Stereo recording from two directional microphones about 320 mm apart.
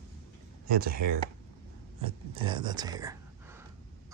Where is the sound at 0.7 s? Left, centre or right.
Right.